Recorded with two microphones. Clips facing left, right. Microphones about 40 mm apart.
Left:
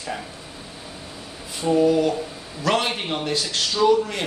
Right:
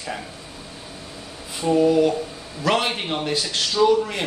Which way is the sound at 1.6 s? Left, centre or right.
Centre.